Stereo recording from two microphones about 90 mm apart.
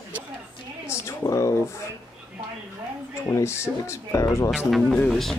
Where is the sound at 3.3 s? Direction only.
30° left (ahead or behind).